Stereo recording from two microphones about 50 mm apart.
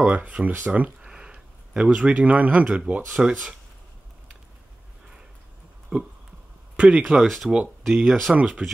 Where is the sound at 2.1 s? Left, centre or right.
Right.